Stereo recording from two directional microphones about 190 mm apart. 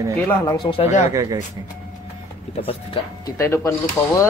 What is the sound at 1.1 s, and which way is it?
Speech, 20° right (ahead or behind).